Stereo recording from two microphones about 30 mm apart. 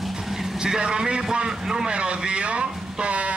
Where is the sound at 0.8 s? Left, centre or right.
Right.